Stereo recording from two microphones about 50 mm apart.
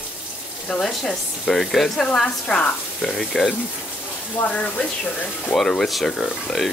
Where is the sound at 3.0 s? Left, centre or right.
Centre.